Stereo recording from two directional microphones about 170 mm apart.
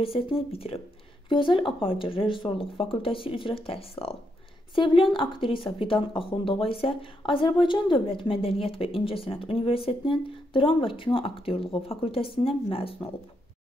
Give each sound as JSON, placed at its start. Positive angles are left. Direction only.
{"t": 0.0, "sound": "speech", "side_deg": 30}